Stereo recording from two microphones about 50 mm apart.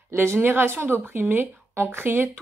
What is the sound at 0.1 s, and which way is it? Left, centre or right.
A woman's voice, right.